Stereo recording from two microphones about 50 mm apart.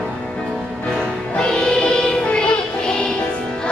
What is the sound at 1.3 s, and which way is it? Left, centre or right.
Music, centre.